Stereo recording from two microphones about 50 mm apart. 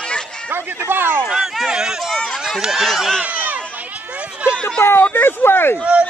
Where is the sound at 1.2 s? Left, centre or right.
Centre.